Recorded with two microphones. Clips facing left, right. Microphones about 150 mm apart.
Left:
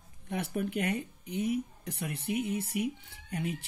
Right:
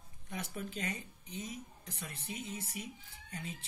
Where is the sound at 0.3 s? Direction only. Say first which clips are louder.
Left 9 dB; 60° left (ahead or behind).